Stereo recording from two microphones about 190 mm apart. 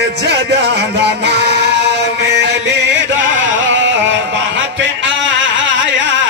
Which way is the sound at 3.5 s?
80° right.